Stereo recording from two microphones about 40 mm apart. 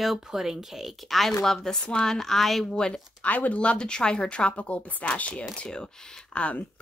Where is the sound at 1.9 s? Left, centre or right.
Left.